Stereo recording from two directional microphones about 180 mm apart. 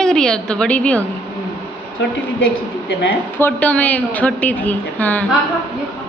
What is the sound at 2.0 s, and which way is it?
Speech, 75° left (ahead or behind).